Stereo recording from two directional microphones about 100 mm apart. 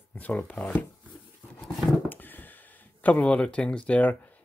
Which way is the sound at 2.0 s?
20° left (ahead or behind).